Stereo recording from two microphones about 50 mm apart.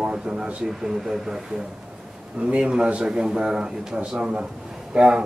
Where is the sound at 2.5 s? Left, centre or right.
Centre.